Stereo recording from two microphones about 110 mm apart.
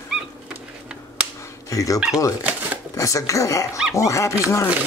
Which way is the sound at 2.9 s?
30° left (ahead or behind).